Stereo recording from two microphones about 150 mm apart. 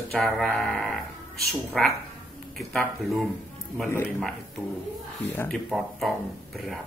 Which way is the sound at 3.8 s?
15° left (ahead or behind).